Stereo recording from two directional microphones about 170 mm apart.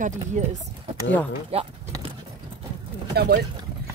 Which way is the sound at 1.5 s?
35° right (ahead or behind).